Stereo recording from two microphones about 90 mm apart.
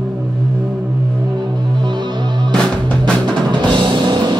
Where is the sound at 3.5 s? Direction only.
60° right (ahead or behind).